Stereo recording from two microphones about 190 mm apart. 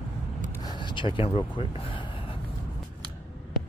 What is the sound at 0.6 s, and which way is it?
Speech, 25° left (ahead or behind).